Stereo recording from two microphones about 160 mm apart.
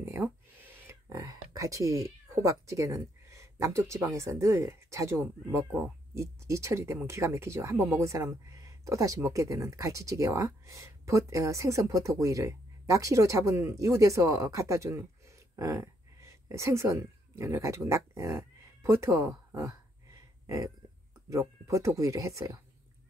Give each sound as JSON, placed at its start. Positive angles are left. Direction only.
{"t": 0.0, "sound": "speech", "side_deg": -15}
{"t": 20.4, "sound": "a sound", "side_deg": -20}
{"t": 21.3, "sound": "speech", "side_deg": -20}